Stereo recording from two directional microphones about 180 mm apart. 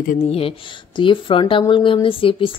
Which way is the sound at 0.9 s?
30° left (ahead or behind).